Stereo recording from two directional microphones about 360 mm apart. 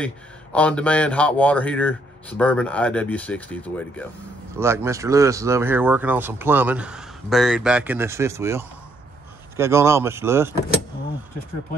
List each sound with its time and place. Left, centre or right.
0.0 s speech: centre
4.6 s speech: centre